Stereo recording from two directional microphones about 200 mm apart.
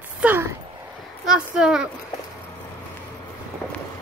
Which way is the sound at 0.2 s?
10° right (ahead or behind).